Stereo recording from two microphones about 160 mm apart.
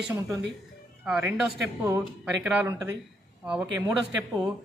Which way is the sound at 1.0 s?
5° right (ahead or behind).